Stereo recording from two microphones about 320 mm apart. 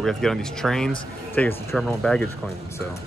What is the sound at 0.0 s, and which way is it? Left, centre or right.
Speech, centre.